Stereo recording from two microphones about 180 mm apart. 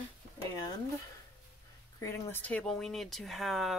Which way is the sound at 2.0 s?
15° left (ahead or behind).